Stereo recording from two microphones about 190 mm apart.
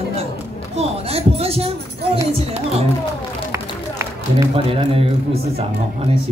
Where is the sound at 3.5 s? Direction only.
15° right (ahead or behind).